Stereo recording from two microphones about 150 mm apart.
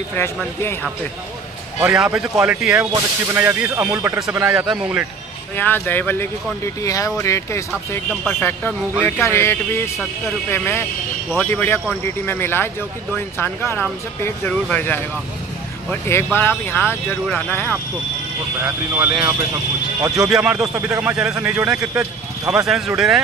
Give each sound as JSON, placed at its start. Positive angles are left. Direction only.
{"t": 1.8, "sound": "speech", "side_deg": -5}
{"t": 2.8, "sound": "speech", "side_deg": -20}
{"t": 5.6, "sound": "speech", "side_deg": 15}
{"t": 18.6, "sound": "speech", "side_deg": -10}